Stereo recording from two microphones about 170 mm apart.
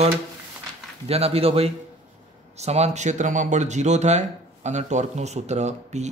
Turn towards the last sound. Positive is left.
turn(degrees=-40)  # may be behind; listen again after turning